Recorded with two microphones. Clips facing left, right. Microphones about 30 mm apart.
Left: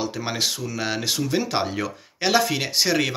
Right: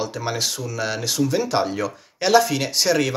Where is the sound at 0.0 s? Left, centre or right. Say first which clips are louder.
Right 1 dB; centre.